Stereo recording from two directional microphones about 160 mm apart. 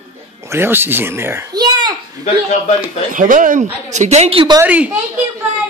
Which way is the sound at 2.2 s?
45° left (ahead or behind).